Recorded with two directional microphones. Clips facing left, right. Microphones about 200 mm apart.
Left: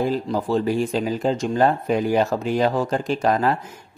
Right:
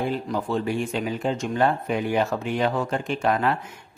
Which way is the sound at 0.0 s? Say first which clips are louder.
Left 4 dB; 35° left (ahead or behind).